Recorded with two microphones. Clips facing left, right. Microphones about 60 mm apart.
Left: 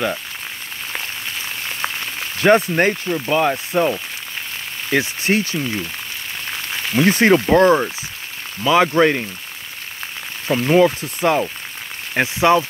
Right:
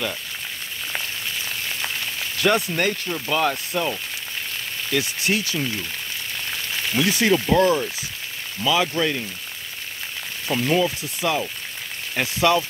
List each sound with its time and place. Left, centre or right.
2.3 s speech: left
3.1 s speech: centre
7.0 s speech: left
10.5 s speech: left
12.1 s speech: left